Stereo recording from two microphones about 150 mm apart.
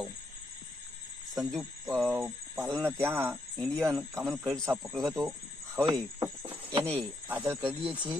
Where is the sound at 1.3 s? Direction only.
Centre (ahead or behind).